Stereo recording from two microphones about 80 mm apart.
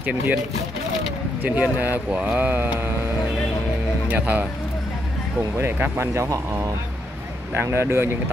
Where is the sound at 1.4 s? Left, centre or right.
Right.